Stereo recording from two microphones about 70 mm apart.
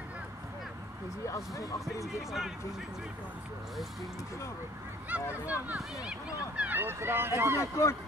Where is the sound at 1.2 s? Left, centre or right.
Left.